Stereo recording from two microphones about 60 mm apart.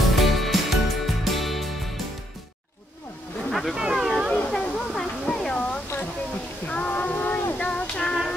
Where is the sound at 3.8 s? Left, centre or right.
Centre.